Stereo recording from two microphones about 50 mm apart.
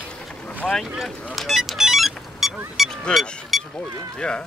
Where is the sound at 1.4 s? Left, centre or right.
Centre.